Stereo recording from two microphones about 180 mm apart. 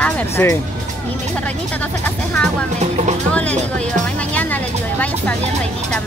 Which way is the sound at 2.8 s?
40° right (ahead or behind).